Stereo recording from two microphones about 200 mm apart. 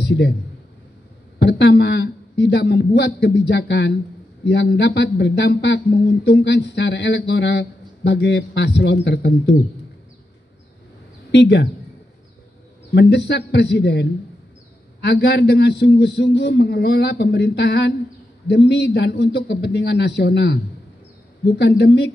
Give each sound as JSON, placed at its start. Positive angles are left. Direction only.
{"t": 0.0, "sound": "a man's voice", "side_deg": 55}
{"t": 1.4, "sound": "speech", "side_deg": 55}
{"t": 11.3, "sound": "speech", "side_deg": 60}
{"t": 12.9, "sound": "speech", "side_deg": 55}